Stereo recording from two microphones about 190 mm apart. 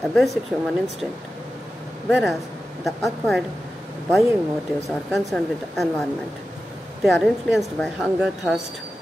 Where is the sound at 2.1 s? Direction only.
5° right (ahead or behind).